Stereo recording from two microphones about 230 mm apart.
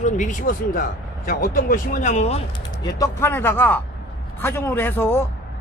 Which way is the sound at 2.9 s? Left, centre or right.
Centre.